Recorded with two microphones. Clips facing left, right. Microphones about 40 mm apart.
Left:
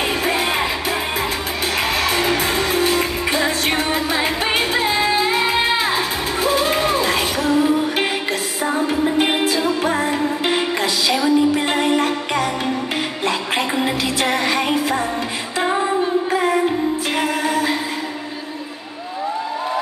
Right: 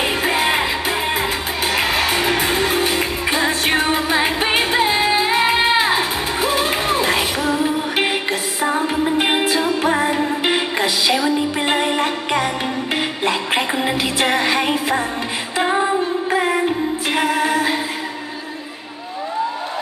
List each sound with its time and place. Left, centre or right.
0.2 s music: centre